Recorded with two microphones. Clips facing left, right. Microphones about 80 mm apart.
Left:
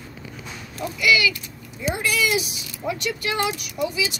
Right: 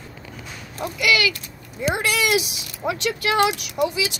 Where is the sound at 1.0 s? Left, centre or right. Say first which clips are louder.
Left 1 dB; right.